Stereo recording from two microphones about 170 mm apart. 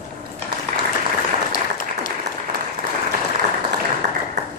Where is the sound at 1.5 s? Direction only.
50° left (ahead or behind).